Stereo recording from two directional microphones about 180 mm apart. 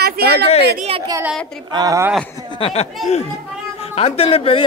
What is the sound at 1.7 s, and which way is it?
Speech, 20° right (ahead or behind).